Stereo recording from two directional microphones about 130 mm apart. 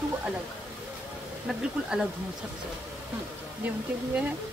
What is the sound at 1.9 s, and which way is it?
Speech, 10° right (ahead or behind).